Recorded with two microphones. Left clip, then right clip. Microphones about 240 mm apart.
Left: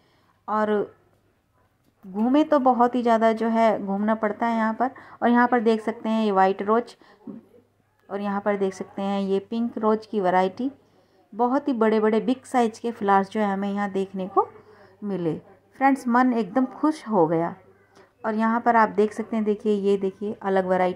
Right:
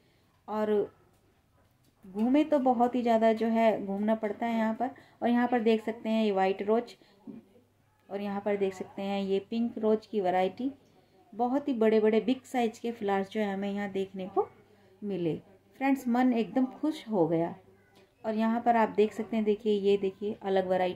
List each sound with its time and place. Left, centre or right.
0.5 s speech: centre
2.2 s speech: left
8.1 s a woman's voice: left